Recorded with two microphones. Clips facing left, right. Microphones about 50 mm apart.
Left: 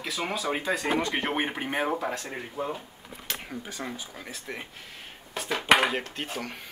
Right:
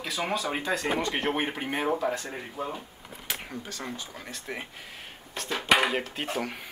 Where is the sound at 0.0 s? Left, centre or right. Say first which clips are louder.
Right 1 dB; centre.